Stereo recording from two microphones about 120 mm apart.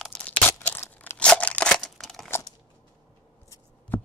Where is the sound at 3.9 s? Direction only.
15° left (ahead or behind).